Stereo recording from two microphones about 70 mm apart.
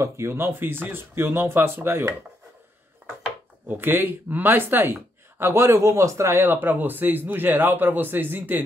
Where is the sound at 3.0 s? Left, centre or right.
Right.